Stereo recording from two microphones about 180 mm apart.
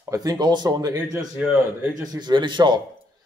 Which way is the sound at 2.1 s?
25° right (ahead or behind).